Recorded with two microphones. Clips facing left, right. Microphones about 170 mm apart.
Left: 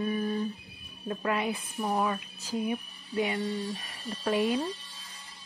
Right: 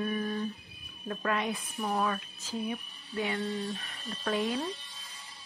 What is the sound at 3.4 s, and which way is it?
Music, centre (ahead or behind).